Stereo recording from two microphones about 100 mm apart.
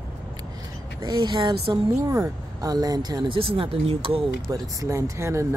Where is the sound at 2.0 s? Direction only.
30° right (ahead or behind).